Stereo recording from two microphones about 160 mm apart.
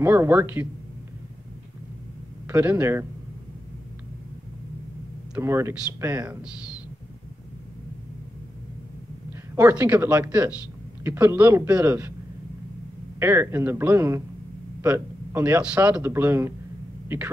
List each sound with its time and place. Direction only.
0.0 s speech: 15° right (ahead or behind)
2.4 s speech: 10° right (ahead or behind)
5.4 s speech: 15° right (ahead or behind)
9.6 s speech: 10° right (ahead or behind)
13.2 s speech: 15° right (ahead or behind)